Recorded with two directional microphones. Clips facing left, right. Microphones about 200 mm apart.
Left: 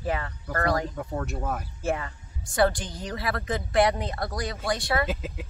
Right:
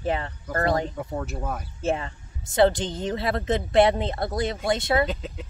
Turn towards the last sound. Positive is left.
turn(degrees=5)  # may be behind; listen again after turning